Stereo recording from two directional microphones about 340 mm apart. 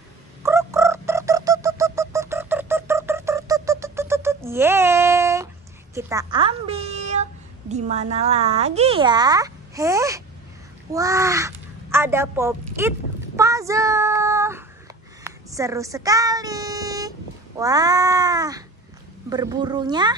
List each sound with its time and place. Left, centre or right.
0.4 s bird: centre
5.9 s a woman's voice: centre
13.4 s child singing: centre
17.6 s cat: centre
19.2 s speech: centre